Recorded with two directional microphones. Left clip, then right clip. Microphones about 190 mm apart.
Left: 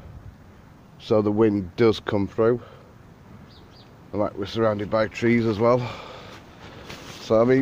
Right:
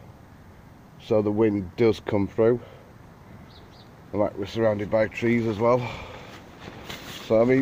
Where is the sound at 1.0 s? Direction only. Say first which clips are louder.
Left 2 dB; 20° left (ahead or behind); by 2.6 s centre (ahead or behind).